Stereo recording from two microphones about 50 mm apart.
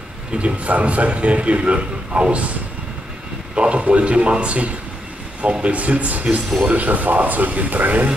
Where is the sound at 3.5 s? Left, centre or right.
Right.